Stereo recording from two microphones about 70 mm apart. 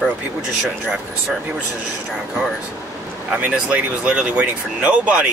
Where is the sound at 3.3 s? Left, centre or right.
Centre.